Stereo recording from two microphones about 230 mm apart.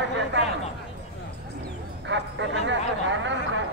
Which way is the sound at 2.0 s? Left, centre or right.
Right.